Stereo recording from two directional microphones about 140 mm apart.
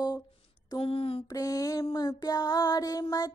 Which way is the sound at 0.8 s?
40° left (ahead or behind).